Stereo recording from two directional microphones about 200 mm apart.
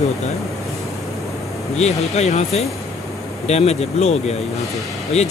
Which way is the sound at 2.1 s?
35° left (ahead or behind).